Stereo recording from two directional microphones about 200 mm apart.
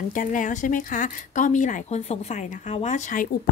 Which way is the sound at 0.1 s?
40° left (ahead or behind).